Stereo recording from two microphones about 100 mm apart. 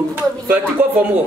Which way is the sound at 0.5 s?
15° right (ahead or behind).